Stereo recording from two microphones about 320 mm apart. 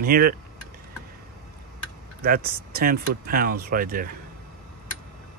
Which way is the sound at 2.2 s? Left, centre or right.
Right.